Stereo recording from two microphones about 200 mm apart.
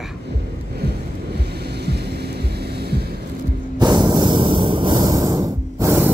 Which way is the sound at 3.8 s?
20° right (ahead or behind).